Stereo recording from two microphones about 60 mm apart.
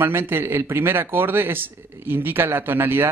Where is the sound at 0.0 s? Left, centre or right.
Right.